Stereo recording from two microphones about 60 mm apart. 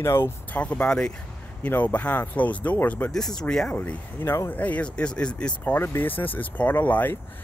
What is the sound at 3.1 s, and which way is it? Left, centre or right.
Speech, centre.